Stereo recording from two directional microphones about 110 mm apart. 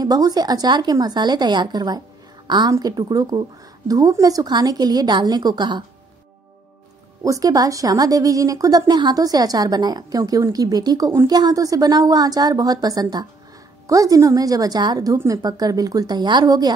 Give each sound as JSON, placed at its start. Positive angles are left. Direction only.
{"t": 0.0, "sound": "a woman's voice", "side_deg": -35}
{"t": 7.2, "sound": "a woman's voice", "side_deg": -35}